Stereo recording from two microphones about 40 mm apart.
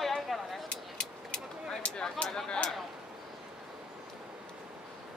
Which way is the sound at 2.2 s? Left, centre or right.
Centre.